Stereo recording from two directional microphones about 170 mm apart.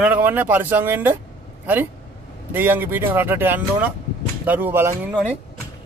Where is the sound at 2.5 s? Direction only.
10° right (ahead or behind).